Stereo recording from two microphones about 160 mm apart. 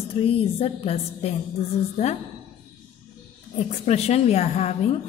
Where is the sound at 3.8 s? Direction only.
40° left (ahead or behind).